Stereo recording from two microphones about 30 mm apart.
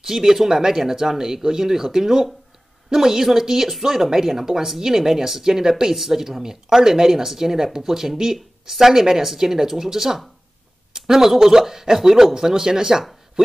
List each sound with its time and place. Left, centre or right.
0.0 s speech: centre